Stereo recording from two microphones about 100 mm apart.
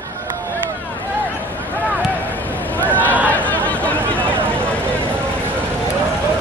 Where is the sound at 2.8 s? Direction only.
15° left (ahead or behind).